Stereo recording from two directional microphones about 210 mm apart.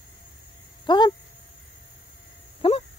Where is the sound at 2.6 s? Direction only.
30° left (ahead or behind).